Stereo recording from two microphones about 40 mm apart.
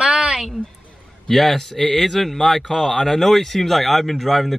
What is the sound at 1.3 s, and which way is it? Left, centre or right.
Speech, centre.